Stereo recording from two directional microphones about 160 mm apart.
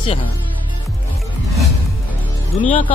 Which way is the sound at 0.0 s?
30° left (ahead or behind).